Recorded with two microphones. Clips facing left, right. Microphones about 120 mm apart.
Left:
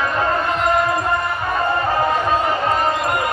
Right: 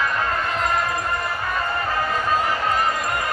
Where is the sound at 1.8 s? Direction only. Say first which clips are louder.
Left 5 dB; 30° left (ahead or behind).